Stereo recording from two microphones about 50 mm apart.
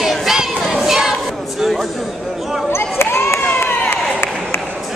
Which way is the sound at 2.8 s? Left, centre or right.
Left.